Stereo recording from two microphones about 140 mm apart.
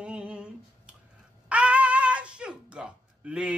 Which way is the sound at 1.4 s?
10° right (ahead or behind).